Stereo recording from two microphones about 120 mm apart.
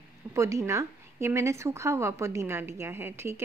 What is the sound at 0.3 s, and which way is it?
Speech, 25° right (ahead or behind).